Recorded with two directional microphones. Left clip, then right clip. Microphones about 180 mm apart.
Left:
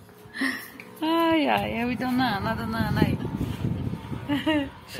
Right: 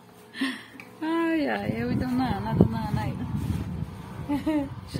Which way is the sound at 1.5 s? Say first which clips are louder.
Left 4 dB; 15° left (ahead or behind).